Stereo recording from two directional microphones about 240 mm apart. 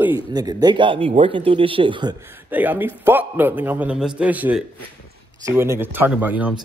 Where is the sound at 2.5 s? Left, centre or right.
Centre.